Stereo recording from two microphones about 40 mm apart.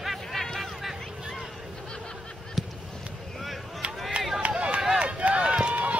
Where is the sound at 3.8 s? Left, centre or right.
Right.